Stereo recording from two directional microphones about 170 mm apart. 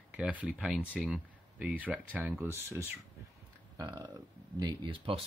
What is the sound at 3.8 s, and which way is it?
Speech, 20° right (ahead or behind).